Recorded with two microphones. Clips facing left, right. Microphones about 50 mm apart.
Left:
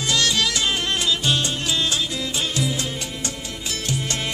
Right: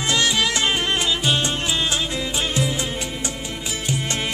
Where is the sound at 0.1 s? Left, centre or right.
Centre.